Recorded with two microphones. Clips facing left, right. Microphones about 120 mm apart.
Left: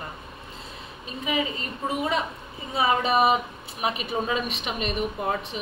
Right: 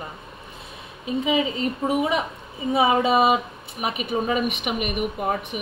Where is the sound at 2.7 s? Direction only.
20° right (ahead or behind).